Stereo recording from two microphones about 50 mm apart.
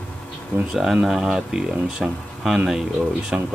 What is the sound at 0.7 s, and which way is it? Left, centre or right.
Speech, centre.